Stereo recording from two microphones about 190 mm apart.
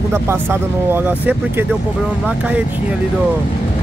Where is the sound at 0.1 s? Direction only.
10° right (ahead or behind).